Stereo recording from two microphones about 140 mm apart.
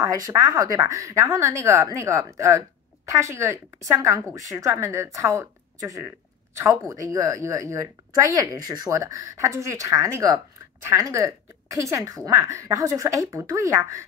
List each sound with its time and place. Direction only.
0.0 s speech: 25° right (ahead or behind)